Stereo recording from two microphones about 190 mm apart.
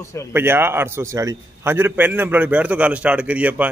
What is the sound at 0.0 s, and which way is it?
Speech, 15° left (ahead or behind).